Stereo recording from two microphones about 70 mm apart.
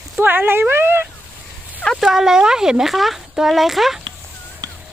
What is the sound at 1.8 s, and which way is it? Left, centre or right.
Speech, centre.